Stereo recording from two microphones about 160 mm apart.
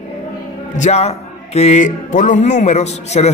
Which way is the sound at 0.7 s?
45° left (ahead or behind).